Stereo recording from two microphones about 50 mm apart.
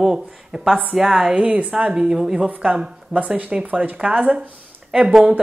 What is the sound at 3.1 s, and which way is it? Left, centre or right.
A woman's voice, right.